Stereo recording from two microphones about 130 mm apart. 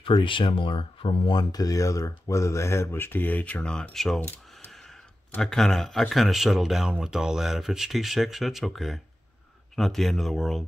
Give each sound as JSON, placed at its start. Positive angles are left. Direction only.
{"t": 0.0, "sound": "speech", "side_deg": 40}
{"t": 4.6, "sound": "a sound", "side_deg": 0}
{"t": 5.3, "sound": "speech", "side_deg": 5}